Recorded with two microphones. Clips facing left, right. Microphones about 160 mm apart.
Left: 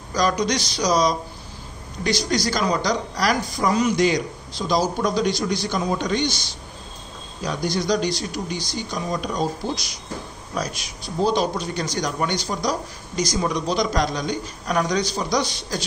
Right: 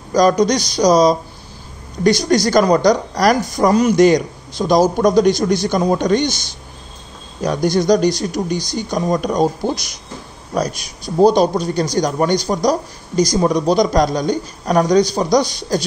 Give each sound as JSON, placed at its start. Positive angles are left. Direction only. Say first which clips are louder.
{"t": 0.1, "sound": "speech", "louder": "right 8 dB", "side_deg": -40}
{"t": 2.0, "sound": "speech", "louder": "right 8 dB", "side_deg": -45}
{"t": 7.4, "sound": "speech", "louder": "right 8 dB", "side_deg": -45}